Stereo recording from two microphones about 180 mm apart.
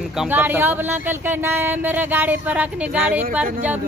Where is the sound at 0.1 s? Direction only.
5° right (ahead or behind).